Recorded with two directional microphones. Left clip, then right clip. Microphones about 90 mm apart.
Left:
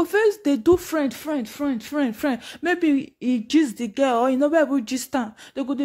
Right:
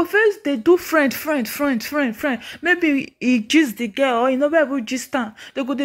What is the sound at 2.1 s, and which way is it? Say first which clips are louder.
Speech: right 2 dB; 40° left (ahead or behind).